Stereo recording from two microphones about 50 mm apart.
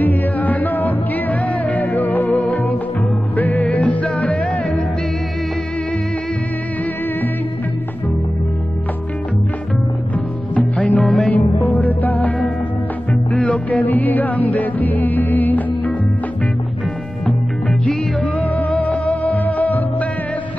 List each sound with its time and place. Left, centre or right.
0.0 s music: left
10.5 s music: left
18.4 s music: left